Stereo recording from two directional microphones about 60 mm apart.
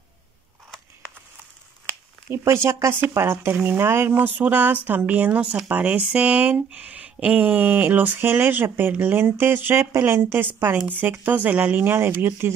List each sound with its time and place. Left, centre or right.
2.3 s speech: right
11.9 s speech: right